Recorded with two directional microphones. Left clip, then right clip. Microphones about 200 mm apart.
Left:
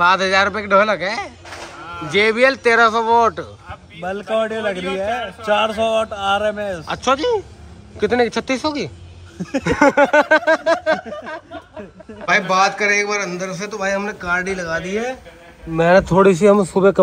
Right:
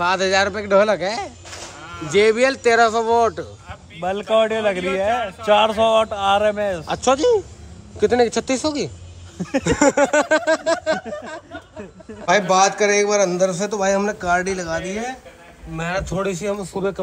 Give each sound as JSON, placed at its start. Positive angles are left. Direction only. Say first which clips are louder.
{"t": 0.0, "sound": "a man's voice", "louder": "left 4 dB", "side_deg": -10}
{"t": 4.0, "sound": "a man's voice", "louder": "right 2 dB", "side_deg": -20}
{"t": 15.7, "sound": "speech", "louder": "left 12 dB", "side_deg": 10}